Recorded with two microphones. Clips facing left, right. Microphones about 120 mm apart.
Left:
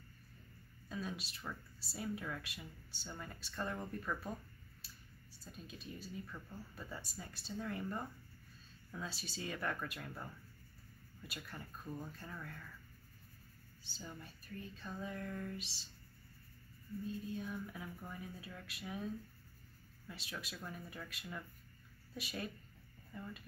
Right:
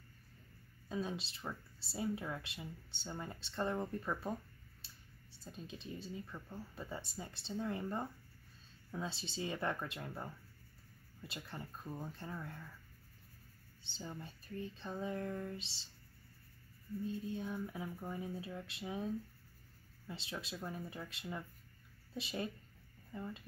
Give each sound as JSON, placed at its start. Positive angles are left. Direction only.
{"t": 0.8, "sound": "speech", "side_deg": -25}
{"t": 13.8, "sound": "speech", "side_deg": -25}
{"t": 17.3, "sound": "speech", "side_deg": -25}
{"t": 20.1, "sound": "speech", "side_deg": -25}